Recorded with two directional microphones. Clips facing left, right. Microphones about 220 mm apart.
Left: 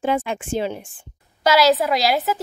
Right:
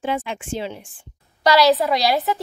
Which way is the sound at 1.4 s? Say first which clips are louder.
Even; centre (ahead or behind).